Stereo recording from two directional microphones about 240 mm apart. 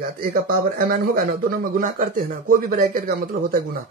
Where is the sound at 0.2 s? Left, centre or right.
Right.